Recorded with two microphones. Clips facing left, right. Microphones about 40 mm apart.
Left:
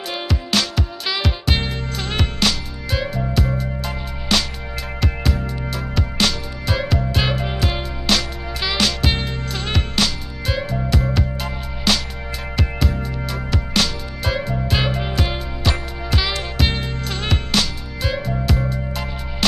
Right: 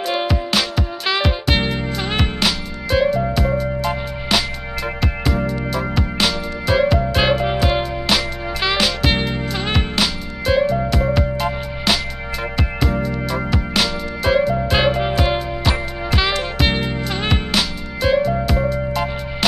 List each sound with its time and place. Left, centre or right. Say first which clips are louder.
0.2 s music: right 2 dB; centre
13.0 s music: right 5 dB; centre